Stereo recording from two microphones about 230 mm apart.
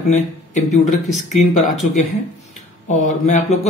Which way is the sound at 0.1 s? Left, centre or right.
Left.